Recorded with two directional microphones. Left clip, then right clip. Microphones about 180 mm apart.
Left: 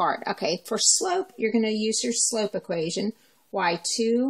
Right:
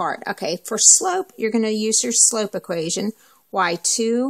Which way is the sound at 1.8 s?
Centre (ahead or behind).